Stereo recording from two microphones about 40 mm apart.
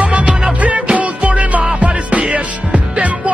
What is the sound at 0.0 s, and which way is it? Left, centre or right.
Music, right.